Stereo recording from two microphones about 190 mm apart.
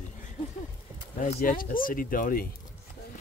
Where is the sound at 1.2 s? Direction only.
45° left (ahead or behind).